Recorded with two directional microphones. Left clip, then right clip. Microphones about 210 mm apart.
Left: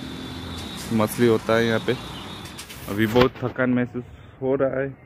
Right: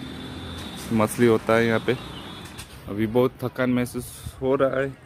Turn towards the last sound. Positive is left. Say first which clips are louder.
# right 1 dB
turn(degrees=-15)  # may be behind; listen again after turning